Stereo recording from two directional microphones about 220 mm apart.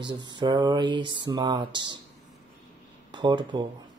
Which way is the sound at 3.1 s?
20° right (ahead or behind).